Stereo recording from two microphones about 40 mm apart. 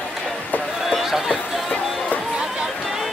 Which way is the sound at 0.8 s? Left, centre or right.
Centre.